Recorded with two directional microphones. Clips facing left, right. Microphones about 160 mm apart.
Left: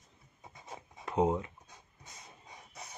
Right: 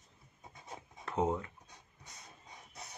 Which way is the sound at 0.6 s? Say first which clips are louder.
Left 2 dB; 15° left (ahead or behind).